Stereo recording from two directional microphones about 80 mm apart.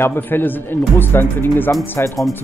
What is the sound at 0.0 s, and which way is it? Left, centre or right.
Speech, left.